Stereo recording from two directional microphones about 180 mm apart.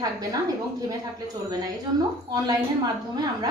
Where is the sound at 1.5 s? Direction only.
20° right (ahead or behind).